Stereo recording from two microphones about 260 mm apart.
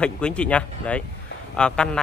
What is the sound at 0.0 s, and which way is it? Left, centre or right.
A man's voice, centre.